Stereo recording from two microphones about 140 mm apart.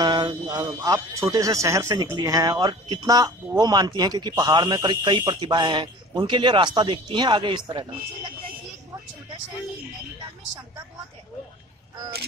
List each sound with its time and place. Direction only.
0.0 s speech: 25° right (ahead or behind)